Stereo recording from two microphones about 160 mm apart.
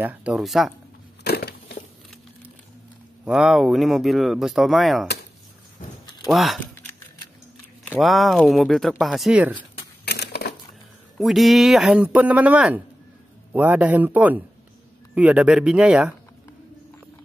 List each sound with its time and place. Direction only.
0.0 s speech: 10° right (ahead or behind)
1.2 s wood: 90° left
3.3 s speech: 5° right (ahead or behind)
6.2 s speech: centre (ahead or behind)
8.0 s speech: centre (ahead or behind)
10.0 s a sound: 90° left
11.1 s speech: centre (ahead or behind)